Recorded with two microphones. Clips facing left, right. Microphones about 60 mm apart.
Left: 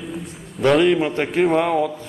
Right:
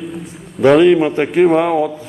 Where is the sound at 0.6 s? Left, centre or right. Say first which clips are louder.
Right 6 dB; centre.